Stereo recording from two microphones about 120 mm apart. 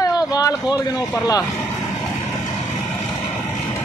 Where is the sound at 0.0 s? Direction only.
30° left (ahead or behind).